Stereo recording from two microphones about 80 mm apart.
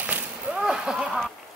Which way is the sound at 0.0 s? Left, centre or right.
Centre.